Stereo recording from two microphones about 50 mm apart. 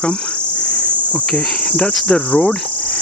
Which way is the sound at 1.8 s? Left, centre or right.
Centre.